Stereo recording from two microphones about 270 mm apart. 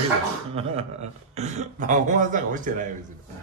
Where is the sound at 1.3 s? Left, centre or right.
Right.